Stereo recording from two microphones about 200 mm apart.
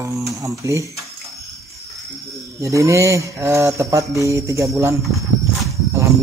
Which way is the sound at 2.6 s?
15° right (ahead or behind).